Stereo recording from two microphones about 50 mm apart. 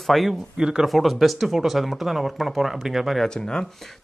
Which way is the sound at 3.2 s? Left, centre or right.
Centre.